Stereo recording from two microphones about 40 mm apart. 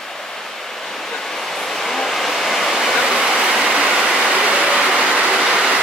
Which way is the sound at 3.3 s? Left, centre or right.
Centre.